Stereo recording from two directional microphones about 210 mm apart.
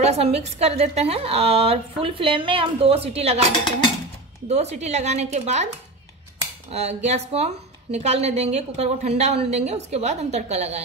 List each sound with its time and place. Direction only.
0.0 s a woman's voice: 30° right (ahead or behind)
4.5 s a woman's voice: 30° right (ahead or behind)
6.7 s a woman's voice: 30° right (ahead or behind)